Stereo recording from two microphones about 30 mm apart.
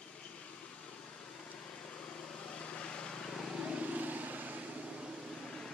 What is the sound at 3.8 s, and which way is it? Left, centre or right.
Vehicle, right.